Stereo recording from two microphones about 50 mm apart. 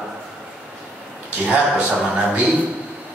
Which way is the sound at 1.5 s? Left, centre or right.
Right.